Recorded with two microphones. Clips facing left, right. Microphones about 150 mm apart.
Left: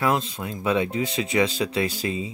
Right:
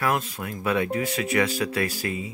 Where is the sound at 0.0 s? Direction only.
20° left (ahead or behind).